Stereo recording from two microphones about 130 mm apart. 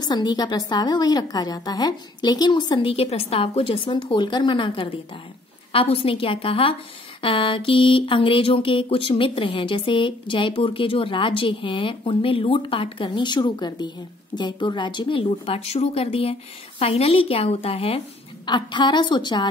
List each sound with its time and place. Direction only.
0.0 s a woman's voice: 35° left (ahead or behind)